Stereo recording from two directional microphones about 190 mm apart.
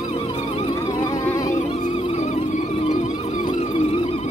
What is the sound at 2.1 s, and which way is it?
Music, 35° left (ahead or behind).